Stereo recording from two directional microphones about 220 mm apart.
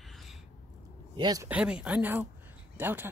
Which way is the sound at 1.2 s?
15° right (ahead or behind).